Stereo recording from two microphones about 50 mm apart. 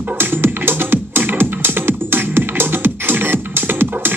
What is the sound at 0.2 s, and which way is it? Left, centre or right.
Music, right.